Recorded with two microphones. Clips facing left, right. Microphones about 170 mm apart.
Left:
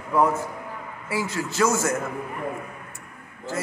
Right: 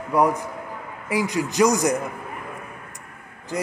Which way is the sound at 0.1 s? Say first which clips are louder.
Right 1 dB; 15° right (ahead or behind).